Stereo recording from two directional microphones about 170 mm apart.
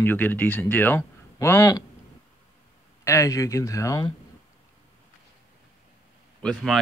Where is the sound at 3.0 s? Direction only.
20° left (ahead or behind).